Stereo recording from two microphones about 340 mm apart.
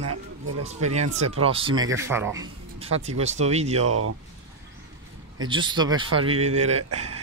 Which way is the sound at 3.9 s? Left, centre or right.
Right.